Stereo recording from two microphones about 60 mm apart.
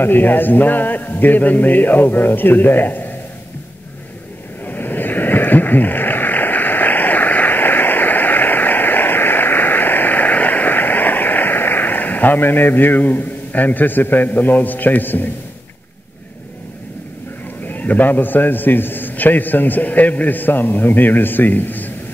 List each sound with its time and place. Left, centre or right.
0.0 s a man's voice: left
4.6 s a sound: left
17.6 s a man's voice: left